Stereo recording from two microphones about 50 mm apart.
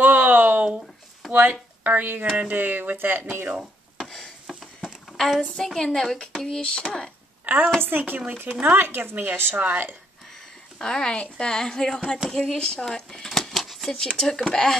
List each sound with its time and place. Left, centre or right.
0.0 s a sound: right
1.3 s speech: right
5.1 s a sound: centre
5.6 s a woman's voice: centre
7.4 s a woman's voice: right
9.6 s speech: right
10.8 s speech: centre
12.8 s a sound: centre
13.9 s speech: centre